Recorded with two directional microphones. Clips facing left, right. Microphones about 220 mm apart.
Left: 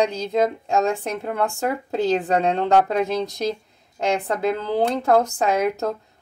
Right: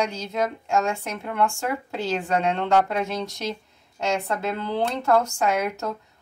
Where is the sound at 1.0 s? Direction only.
40° left (ahead or behind).